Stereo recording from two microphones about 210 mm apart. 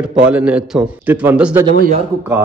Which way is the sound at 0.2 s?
5° right (ahead or behind).